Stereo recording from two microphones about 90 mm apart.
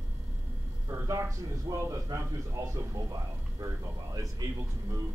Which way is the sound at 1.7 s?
35° right (ahead or behind).